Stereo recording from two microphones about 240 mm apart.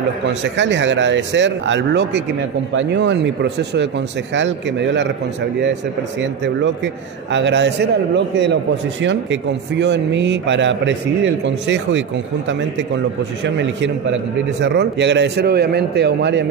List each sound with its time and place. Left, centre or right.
0.3 s speech: right
6.4 s speech: right
9.0 s speech: right